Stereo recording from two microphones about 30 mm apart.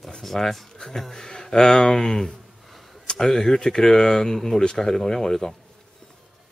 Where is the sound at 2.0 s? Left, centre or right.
Centre.